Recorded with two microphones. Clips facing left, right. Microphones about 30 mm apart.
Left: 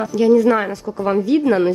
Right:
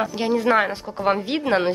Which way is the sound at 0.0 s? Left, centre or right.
Right.